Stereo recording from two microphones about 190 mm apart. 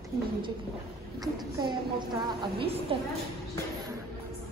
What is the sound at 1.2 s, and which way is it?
Speech, 25° right (ahead or behind).